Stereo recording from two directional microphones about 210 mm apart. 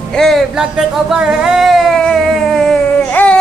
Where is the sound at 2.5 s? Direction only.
Centre (ahead or behind).